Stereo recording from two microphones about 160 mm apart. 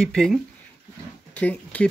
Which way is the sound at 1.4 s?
10° left (ahead or behind).